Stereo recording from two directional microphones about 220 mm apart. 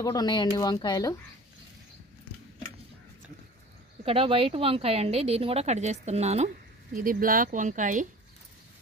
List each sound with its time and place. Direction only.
0.0 s speech: 15° left (ahead or behind)
4.0 s speech: 25° right (ahead or behind)